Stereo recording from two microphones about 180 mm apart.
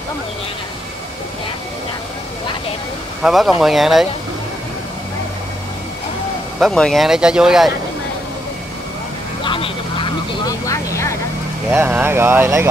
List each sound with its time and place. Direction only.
3.2 s speech: centre (ahead or behind)
6.6 s speech: 5° left (ahead or behind)
9.4 s vehicle: 30° left (ahead or behind)
11.7 s speech: 10° right (ahead or behind)